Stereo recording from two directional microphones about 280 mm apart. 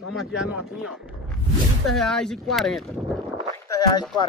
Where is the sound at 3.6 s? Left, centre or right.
Centre.